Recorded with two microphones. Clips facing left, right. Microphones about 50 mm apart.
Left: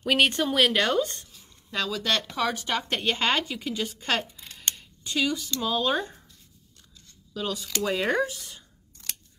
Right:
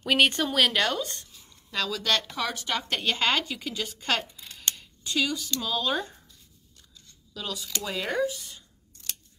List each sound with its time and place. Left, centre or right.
0.0 s speech: centre
7.3 s speech: left
8.0 s speech: left